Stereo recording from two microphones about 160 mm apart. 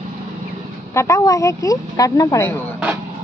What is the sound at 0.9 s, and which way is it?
Speech, 20° left (ahead or behind).